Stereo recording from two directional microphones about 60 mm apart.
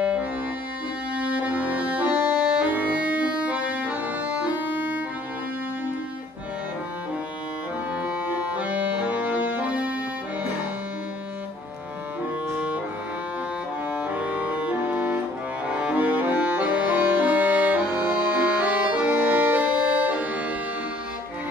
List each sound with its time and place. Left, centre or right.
1.1 s accordion: right
4.6 s music: right
8.0 s accordion: right
13.9 s music: right
18.4 s accordion: right